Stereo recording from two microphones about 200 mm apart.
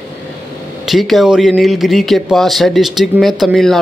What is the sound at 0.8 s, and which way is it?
Speech, centre (ahead or behind).